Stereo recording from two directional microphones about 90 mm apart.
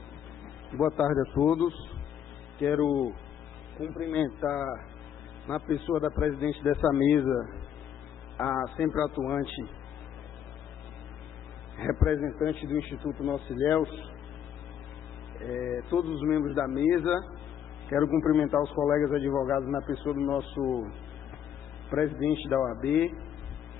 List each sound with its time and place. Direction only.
0.7 s a man's voice: 15° left (ahead or behind)
1.4 s a man's voice: 5° left (ahead or behind)
12.0 s a man's voice: 10° left (ahead or behind)
15.4 s a man's voice: 15° left (ahead or behind)
21.9 s a man's voice: 10° left (ahead or behind)
22.8 s a man's voice: 5° left (ahead or behind)